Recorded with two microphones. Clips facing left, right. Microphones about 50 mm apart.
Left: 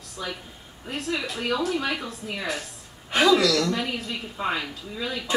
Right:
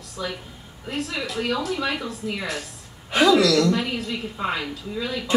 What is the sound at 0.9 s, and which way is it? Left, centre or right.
Speech, left.